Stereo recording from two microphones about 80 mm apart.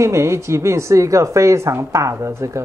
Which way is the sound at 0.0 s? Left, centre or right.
Right.